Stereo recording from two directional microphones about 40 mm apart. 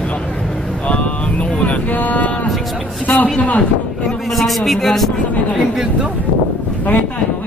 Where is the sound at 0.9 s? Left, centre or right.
Left.